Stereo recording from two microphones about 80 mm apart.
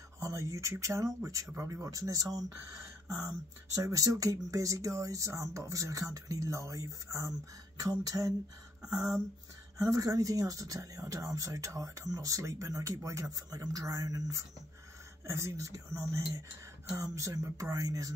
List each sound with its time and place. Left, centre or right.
0.2 s speech: right
3.7 s speech: right
9.8 s speech: right
15.2 s speech: right